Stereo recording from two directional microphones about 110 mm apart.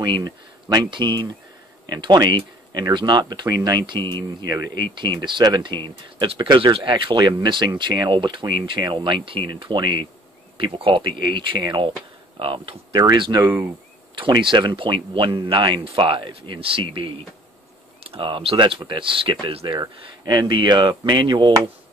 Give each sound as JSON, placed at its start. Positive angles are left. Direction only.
{"t": 0.0, "sound": "speech", "side_deg": -40}
{"t": 12.4, "sound": "speech", "side_deg": -55}
{"t": 13.5, "sound": "speech", "side_deg": -15}
{"t": 14.1, "sound": "speech", "side_deg": -50}
{"t": 19.8, "sound": "speech", "side_deg": -40}